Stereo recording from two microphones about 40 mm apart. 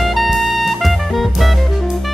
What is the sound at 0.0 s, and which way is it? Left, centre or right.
Jazz, centre.